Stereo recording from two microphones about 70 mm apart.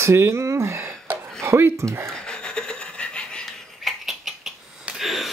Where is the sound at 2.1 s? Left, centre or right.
Centre.